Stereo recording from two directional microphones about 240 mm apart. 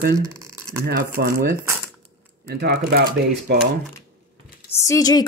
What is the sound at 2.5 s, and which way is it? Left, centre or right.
Speech, right.